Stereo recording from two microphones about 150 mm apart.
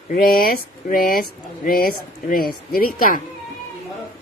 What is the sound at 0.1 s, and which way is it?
Speech, 75° left (ahead or behind).